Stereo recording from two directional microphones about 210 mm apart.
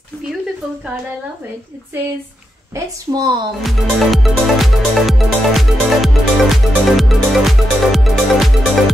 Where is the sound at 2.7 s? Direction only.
15° right (ahead or behind).